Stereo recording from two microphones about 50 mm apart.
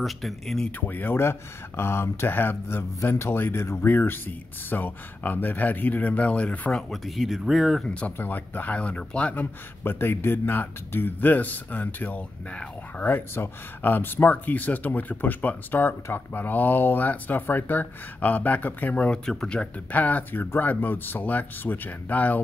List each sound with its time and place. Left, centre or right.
0.0 s speech: centre
0.7 s speech: left
6.9 s speech: centre
7.8 s speech: left
8.2 s speech: left
8.7 s speech: left
9.4 s speech: left
13.0 s speech: left
19.2 s speech: centre
19.9 s speech: left